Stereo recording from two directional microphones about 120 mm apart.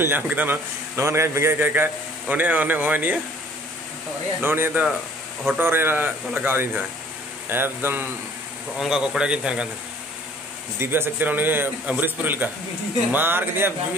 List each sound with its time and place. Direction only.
0.0 s a man's voice: 15° right (ahead or behind)
4.4 s a man's voice: 20° right (ahead or behind)
8.7 s a man's voice: 5° right (ahead or behind)
10.8 s a man's voice: 20° right (ahead or behind)